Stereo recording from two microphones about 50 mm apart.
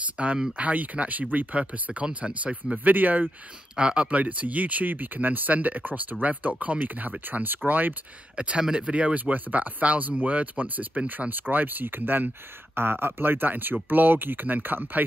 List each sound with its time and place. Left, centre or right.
0.2 s speech: right
1.6 s speech: right
2.4 s speech: right
3.7 s speech: right
8.4 s speech: right